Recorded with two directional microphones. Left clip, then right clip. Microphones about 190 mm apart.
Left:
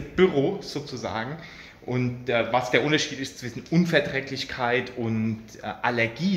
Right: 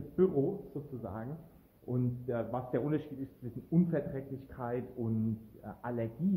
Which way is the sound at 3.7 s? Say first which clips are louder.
Left 11 dB; 15° left (ahead or behind).